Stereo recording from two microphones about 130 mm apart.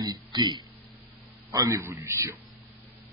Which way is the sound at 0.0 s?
30° right (ahead or behind).